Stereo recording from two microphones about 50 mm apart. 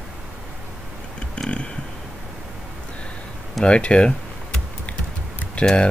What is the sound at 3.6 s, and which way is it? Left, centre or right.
Computer keyboard, left.